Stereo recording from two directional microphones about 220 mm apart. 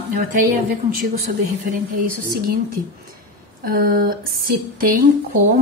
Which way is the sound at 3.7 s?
40° right (ahead or behind).